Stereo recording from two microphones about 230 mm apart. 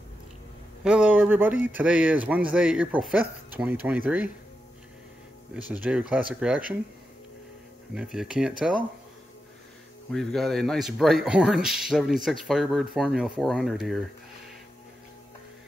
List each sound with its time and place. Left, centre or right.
0.8 s speech: centre
5.5 s speech: centre
7.9 s speech: centre
10.1 s speech: centre